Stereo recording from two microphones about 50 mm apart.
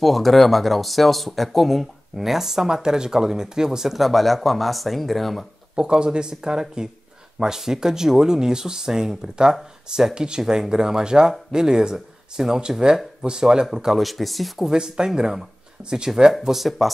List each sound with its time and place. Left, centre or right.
0.0 s speech: centre
5.8 s speech: centre
13.9 s speech: centre
14.7 s speech: centre
16.4 s speech: centre